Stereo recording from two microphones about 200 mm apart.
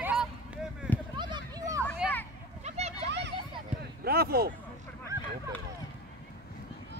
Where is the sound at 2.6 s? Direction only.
30° right (ahead or behind).